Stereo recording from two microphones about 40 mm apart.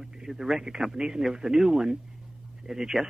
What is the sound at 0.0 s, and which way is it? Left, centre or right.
Speech, centre.